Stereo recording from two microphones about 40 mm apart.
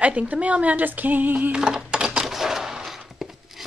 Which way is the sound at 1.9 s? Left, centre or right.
Right.